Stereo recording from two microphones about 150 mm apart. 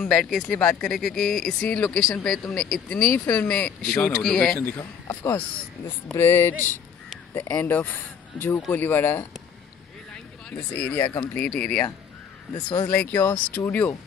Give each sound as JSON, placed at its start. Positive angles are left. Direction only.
{"t": 0.0, "sound": "speech", "side_deg": 5}
{"t": 10.1, "sound": "a sound", "side_deg": 10}
{"t": 11.3, "sound": "speech", "side_deg": 10}
{"t": 12.5, "sound": "speech", "side_deg": 25}
{"t": 12.8, "sound": "speech", "side_deg": 10}